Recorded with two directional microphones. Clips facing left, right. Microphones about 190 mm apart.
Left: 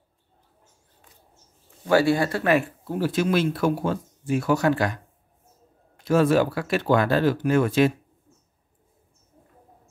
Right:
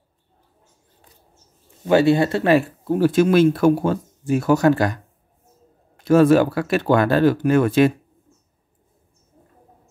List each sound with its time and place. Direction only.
1.9 s speech: 20° right (ahead or behind)
2.9 s speech: 50° right (ahead or behind)
6.0 s speech: 50° right (ahead or behind)